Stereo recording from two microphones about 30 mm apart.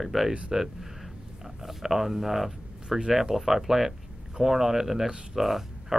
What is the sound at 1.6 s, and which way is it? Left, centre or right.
Speech, centre.